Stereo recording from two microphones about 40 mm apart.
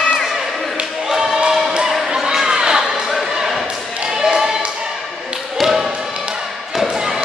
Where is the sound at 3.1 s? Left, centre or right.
Centre.